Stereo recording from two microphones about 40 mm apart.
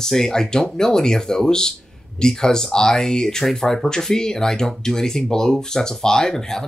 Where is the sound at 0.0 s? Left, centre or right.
Centre.